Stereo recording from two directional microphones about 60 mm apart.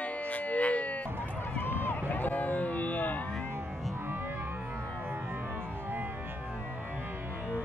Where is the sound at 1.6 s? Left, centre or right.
Left.